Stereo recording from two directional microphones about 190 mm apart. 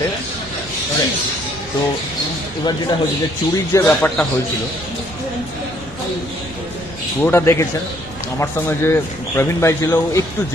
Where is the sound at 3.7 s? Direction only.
15° left (ahead or behind).